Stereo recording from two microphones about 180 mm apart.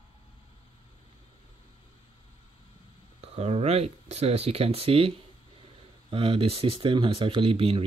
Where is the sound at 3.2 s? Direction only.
35° right (ahead or behind).